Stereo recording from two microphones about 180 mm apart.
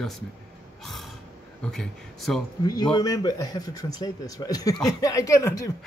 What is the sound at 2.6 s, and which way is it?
A man's voice, 20° left (ahead or behind).